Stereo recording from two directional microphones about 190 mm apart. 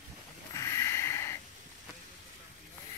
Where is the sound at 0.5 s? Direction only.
15° left (ahead or behind).